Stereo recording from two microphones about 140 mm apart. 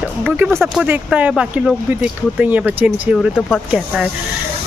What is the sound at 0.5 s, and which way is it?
Speech, centre (ahead or behind).